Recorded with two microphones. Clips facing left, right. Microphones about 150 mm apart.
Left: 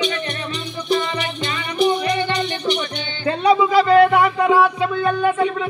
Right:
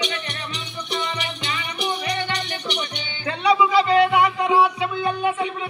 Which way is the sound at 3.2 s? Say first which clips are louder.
Left 3 dB; 45° left (ahead or behind).